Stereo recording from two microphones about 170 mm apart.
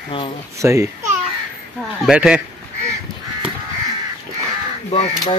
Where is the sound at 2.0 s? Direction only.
5° right (ahead or behind).